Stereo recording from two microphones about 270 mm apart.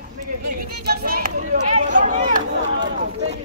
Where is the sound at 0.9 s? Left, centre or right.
Right.